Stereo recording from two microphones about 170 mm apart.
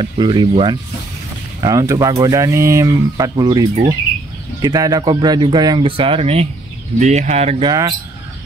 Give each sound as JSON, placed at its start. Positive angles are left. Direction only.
{"t": 0.0, "sound": "speech", "side_deg": -30}
{"t": 7.6, "sound": "speech", "side_deg": -20}